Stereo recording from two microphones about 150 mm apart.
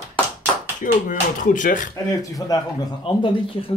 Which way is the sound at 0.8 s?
65° left (ahead or behind).